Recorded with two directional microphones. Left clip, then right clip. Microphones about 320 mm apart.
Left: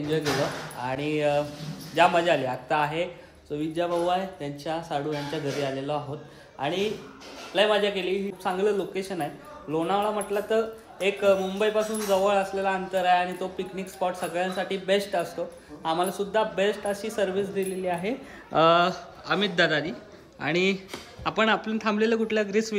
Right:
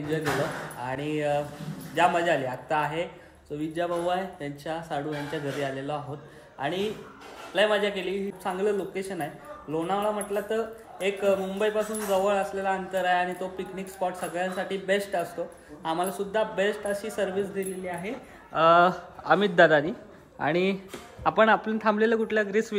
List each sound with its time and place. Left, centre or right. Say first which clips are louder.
0.8 s speech: left 3 dB; centre
17.8 s speech: left 5 dB; centre
18.6 s speech: right 1 dB; centre